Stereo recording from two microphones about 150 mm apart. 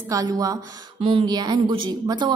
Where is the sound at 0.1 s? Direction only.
25° right (ahead or behind).